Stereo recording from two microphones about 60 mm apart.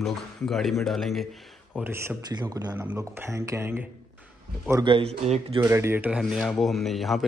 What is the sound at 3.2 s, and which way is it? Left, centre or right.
Speech, right.